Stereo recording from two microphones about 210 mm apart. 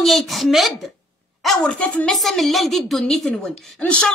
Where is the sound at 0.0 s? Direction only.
Centre (ahead or behind).